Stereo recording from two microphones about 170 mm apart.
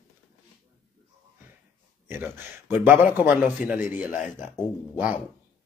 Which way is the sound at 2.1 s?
10° right (ahead or behind).